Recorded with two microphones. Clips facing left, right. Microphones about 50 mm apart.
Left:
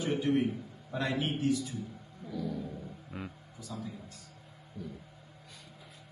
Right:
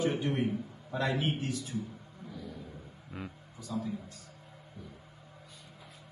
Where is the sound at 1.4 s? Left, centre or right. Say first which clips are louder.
Left 6 dB; right.